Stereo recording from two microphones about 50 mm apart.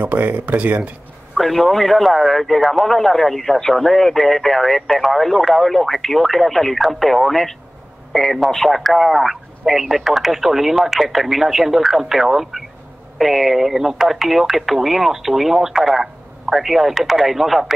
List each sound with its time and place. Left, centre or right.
0.0 s speech: right
1.3 s speech: centre